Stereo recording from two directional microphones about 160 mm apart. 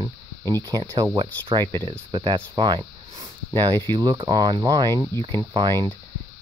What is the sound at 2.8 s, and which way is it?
Snake, 20° right (ahead or behind).